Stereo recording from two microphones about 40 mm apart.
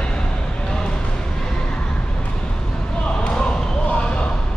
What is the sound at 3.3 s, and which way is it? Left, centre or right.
Basketball bounce, left.